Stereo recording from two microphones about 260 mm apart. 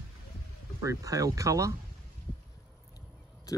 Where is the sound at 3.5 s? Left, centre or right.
Centre.